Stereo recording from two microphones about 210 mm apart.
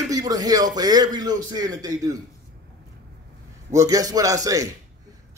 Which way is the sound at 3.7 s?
15° right (ahead or behind).